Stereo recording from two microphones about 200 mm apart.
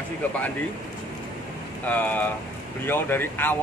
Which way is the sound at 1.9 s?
10° left (ahead or behind).